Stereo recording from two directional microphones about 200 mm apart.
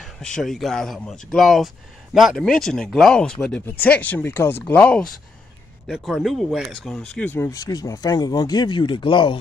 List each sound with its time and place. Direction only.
0.0 s speech: centre (ahead or behind); by 9.4 s 25° left (ahead or behind)